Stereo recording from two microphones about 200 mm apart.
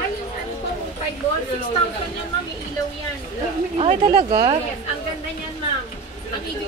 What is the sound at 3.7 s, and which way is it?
Speech, 30° right (ahead or behind).